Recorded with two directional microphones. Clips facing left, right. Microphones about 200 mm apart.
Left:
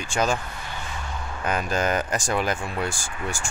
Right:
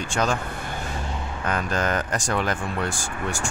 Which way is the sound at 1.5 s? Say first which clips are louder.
Left 1 dB; 10° left (ahead or behind).